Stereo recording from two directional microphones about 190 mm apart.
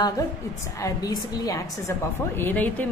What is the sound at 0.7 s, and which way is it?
A woman's voice, 15° left (ahead or behind).